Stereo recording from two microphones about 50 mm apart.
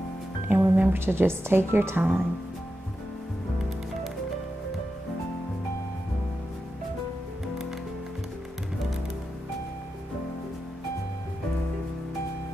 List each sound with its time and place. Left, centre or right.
0.5 s speech: right
2.0 s speech: right